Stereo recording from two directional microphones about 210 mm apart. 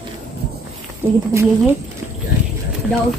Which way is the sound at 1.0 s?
25° right (ahead or behind).